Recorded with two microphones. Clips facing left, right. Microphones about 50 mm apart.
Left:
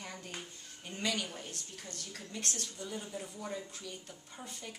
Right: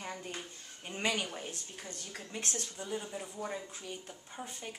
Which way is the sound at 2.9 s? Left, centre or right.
Centre.